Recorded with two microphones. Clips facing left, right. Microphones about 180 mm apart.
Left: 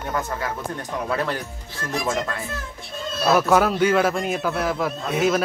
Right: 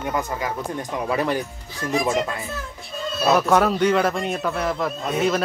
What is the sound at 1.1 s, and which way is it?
Speech, 15° right (ahead or behind).